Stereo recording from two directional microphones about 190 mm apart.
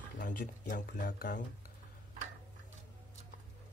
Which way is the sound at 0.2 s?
45° left (ahead or behind).